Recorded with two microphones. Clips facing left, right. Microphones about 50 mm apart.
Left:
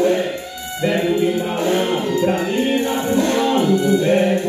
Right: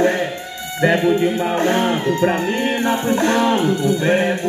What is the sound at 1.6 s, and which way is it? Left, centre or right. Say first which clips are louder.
Music: right 2 dB; right.